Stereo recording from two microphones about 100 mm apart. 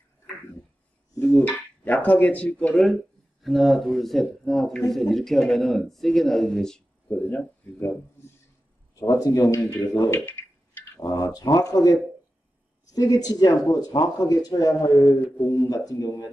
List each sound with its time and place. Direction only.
1.2 s speech: 15° left (ahead or behind)
7.1 s speech: 20° left (ahead or behind)
8.9 s speech: 35° left (ahead or behind)
10.1 s a sound: 20° left (ahead or behind)
11.0 s speech: 40° left (ahead or behind)